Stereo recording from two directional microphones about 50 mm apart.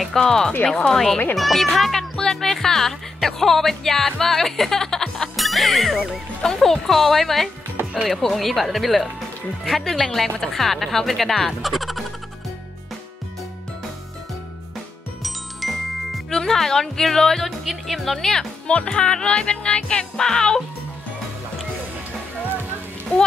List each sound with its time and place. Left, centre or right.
0.1 s speech: centre
15.6 s music: centre
16.3 s speech: centre
18.7 s music: centre